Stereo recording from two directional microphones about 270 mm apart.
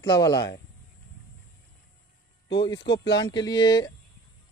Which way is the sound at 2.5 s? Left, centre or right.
Centre.